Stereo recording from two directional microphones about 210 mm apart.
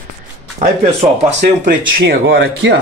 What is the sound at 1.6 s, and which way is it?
Speech, 40° right (ahead or behind).